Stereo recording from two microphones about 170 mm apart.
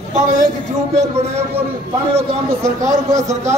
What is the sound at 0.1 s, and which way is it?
Speech, 45° right (ahead or behind).